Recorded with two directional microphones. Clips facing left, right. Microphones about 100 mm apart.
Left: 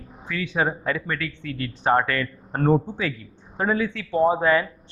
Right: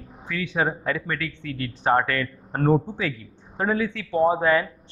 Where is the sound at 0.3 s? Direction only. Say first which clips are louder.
Even; 20° left (ahead or behind).